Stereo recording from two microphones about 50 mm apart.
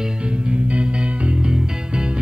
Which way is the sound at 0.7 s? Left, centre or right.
Right.